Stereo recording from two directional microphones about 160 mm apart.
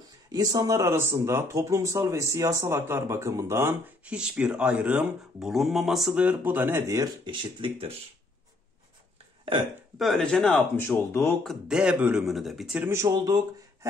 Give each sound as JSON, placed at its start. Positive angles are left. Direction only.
{"t": 0.3, "sound": "speech", "side_deg": -25}
{"t": 9.9, "sound": "speech", "side_deg": 0}
{"t": 10.8, "sound": "speech", "side_deg": 15}
{"t": 11.4, "sound": "speech", "side_deg": -5}
{"t": 12.8, "sound": "speech", "side_deg": -20}